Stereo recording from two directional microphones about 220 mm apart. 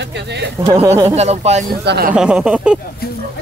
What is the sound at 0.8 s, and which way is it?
Speech, 15° right (ahead or behind).